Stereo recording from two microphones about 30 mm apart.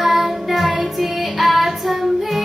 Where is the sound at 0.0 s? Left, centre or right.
Centre.